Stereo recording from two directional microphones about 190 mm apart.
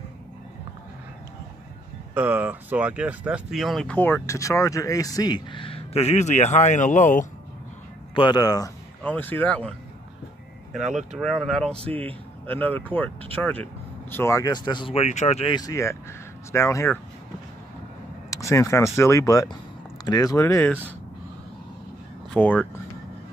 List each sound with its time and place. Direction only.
2.1 s speech: 10° right (ahead or behind); by 7.2 s 40° left (ahead or behind)
8.1 s speech: 25° left (ahead or behind)
9.0 s speech: 10° left (ahead or behind); by 15.5 s 35° left (ahead or behind)
15.5 s speech: 20° left (ahead or behind)
18.3 s speech: 15° left (ahead or behind)
22.3 s speech: 5° left (ahead or behind)